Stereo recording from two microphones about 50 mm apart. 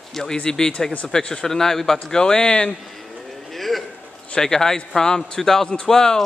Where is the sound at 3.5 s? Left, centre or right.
Centre.